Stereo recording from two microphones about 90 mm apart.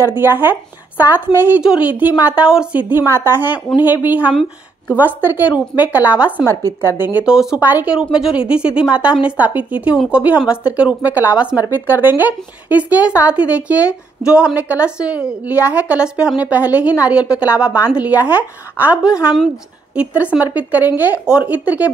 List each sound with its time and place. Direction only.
0.2 s speech: 20° right (ahead or behind)
1.6 s a woman's voice: 10° right (ahead or behind)
6.5 s a woman's voice: 35° right (ahead or behind)
7.0 s speech: 20° right (ahead or behind)
7.2 s a woman's voice: 5° right (ahead or behind)
7.6 s speech: 20° right (ahead or behind)
8.1 s a woman's voice: 10° right (ahead or behind)